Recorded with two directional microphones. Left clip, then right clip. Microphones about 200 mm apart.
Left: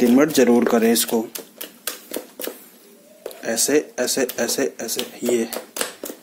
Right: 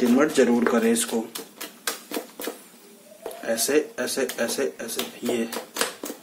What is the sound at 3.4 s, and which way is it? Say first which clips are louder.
Speech: left 3 dB; 35° left (ahead or behind).